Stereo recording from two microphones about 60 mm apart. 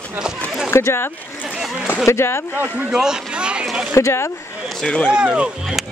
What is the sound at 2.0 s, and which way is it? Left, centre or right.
Speech, left.